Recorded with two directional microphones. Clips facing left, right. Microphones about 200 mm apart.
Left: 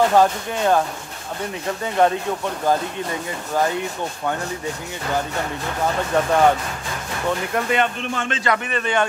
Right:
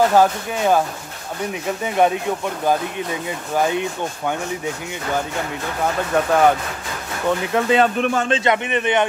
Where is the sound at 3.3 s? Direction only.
15° right (ahead or behind).